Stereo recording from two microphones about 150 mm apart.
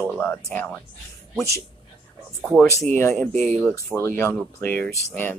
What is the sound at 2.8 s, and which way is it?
Speech, 15° left (ahead or behind).